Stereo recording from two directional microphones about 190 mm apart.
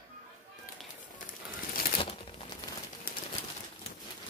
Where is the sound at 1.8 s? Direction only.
50° left (ahead or behind).